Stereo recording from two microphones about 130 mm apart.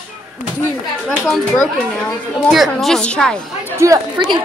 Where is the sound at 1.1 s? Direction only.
5° left (ahead or behind).